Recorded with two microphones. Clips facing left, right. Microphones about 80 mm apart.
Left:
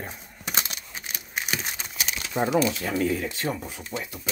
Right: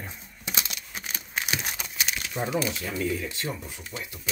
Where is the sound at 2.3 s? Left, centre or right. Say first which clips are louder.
Left 6 dB; left.